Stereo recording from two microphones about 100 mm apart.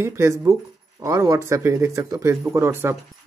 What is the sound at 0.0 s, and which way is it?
Speech, 30° right (ahead or behind).